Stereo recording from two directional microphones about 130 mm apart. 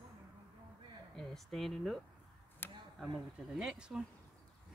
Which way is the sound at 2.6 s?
15° left (ahead or behind).